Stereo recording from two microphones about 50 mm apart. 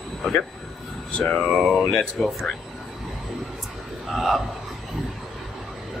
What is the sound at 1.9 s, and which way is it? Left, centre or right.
Speech, centre.